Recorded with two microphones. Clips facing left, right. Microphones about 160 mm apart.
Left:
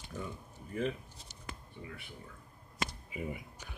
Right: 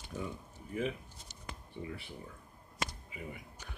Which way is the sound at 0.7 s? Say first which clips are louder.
Left 1 dB; 5° right (ahead or behind).